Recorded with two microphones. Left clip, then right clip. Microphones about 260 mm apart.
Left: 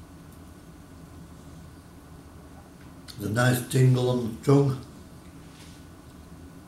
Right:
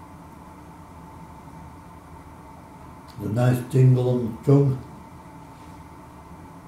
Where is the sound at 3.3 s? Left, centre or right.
Centre.